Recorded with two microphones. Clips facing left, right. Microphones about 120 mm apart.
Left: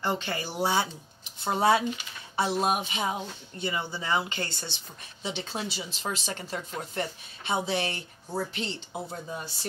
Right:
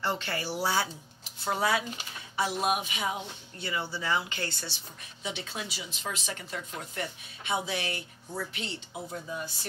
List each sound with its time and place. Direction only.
0.0 s speech: 15° left (ahead or behind); by 9.7 s 35° left (ahead or behind)